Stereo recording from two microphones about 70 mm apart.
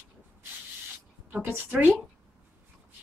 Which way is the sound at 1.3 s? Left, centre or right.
Right.